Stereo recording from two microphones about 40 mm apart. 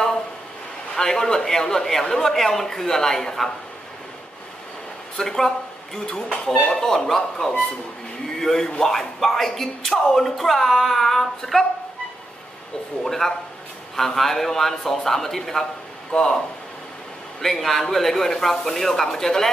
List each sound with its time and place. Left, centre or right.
0.9 s speech: centre
5.1 s speech: centre
13.0 s speech: centre
17.4 s speech: centre